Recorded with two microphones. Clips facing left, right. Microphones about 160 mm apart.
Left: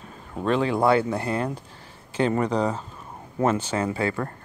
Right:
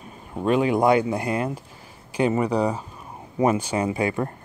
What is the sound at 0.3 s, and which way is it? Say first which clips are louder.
Speech: right 3 dB; 10° right (ahead or behind).